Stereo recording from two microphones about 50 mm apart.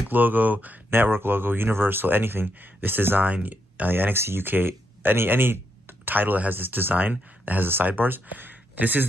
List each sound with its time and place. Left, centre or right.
0.1 s speech: right
0.8 s speech: right